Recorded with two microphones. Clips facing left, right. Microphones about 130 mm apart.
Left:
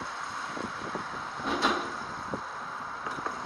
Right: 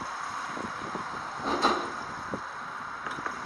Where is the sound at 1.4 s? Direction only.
35° right (ahead or behind).